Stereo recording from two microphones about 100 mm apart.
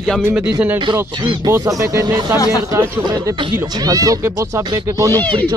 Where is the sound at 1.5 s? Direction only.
30° right (ahead or behind).